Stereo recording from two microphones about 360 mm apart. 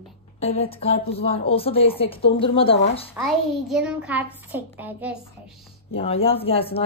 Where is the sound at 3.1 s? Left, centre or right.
Centre.